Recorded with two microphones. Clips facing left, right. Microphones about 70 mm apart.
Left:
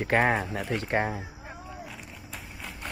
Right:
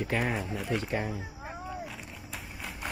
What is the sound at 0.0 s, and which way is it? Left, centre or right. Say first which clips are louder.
Speech: left 6 dB; left.